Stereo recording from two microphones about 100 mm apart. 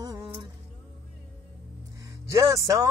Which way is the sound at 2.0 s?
35° right (ahead or behind).